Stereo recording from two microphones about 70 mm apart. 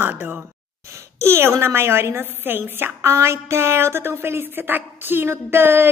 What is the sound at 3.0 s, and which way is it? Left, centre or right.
Music, right.